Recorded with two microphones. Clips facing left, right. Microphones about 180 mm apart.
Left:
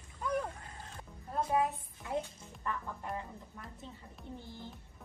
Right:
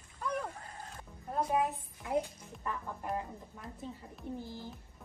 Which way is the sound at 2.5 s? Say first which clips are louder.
Even; 10° right (ahead or behind).